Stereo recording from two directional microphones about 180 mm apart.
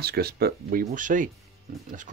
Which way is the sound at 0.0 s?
60° right (ahead or behind).